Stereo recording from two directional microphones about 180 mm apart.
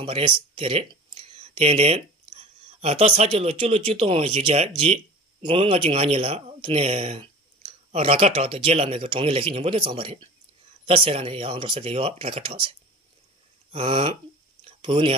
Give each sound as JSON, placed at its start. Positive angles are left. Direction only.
{"t": 0.0, "sound": "speech", "side_deg": -30}